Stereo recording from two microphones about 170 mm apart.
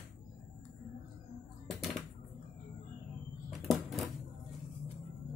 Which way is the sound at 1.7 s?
Centre (ahead or behind).